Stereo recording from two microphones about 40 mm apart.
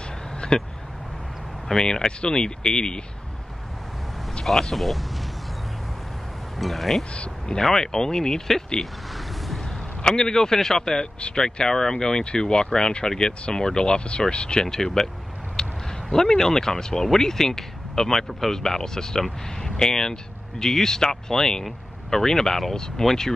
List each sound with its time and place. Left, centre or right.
0.5 s speech: centre
1.7 s speech: centre
4.7 s speech: centre
6.6 s speech: centre
7.2 s speech: centre
10.0 s speech: centre
11.1 s speech: left
11.5 s speech: centre
15.6 s a sound: centre
16.1 s speech: centre